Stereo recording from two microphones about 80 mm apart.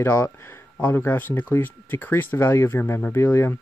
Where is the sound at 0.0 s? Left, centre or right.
Left.